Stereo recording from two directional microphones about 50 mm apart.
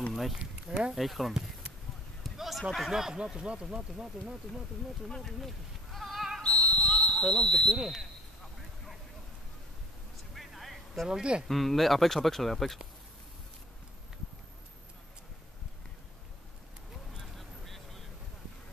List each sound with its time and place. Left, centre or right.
0.1 s speech: centre
2.2 s a sound: centre
2.7 s speech: centre
5.0 s sheep: centre
6.8 s fire alarm: centre
7.7 s speech: centre
10.3 s a sound: centre
11.1 s speech: centre
11.4 s speech: centre
17.2 s vehicle: centre